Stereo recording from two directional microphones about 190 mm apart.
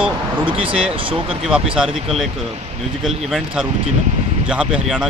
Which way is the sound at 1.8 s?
Centre (ahead or behind).